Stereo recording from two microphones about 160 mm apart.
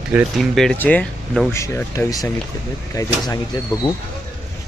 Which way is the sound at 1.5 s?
15° left (ahead or behind).